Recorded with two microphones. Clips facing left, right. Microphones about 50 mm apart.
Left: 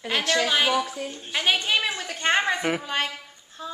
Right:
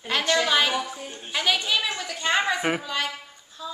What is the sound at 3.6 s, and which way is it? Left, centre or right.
Music, left.